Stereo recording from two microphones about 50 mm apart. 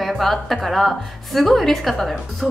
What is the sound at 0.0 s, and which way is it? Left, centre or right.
A woman's voice, centre.